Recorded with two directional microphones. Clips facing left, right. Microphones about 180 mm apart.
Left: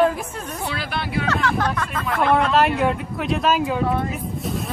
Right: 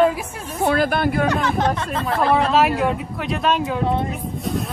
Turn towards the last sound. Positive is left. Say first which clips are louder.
# right 2 dB
turn(degrees=0)  # may be behind; listen again after turning